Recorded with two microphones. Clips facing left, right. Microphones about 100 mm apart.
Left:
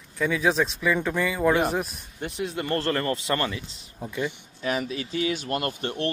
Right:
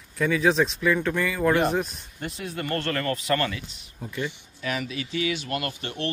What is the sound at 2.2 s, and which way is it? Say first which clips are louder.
Speech: left 2 dB; 20° left (ahead or behind).